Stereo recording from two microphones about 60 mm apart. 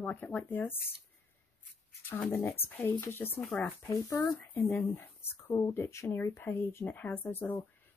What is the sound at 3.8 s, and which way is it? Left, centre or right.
Speech, left.